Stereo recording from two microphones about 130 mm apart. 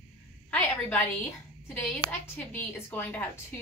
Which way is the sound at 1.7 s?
10° left (ahead or behind).